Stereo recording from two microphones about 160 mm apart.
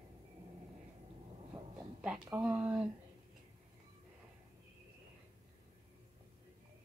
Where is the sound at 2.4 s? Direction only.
5° right (ahead or behind).